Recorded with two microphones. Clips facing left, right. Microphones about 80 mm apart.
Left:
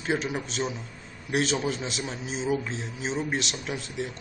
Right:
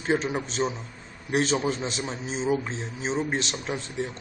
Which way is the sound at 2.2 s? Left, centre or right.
Centre.